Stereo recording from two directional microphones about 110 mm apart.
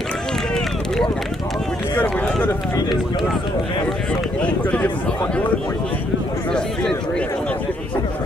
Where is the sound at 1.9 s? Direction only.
15° left (ahead or behind).